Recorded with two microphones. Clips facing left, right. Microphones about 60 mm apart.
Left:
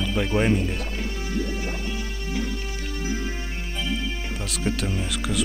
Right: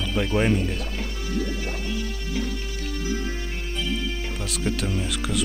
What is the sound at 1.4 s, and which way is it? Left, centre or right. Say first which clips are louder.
Music: even; left.